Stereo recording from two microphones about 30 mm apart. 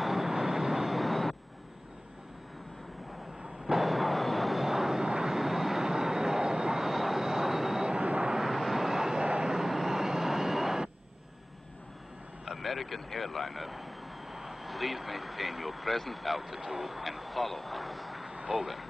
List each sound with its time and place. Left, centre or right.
0.0 s vehicle: centre
0.9 s vehicle: centre
3.6 s a sound: centre
4.6 s vehicle: centre
6.8 s vehicle: centre
8.0 s vehicle: right
8.4 s vehicle: centre
12.4 s speech: centre